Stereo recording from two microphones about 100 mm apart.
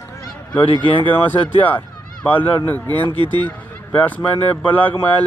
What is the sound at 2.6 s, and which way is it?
Speech, 20° left (ahead or behind).